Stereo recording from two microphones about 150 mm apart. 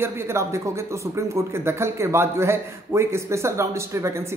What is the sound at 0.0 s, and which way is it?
Speech, 20° right (ahead or behind).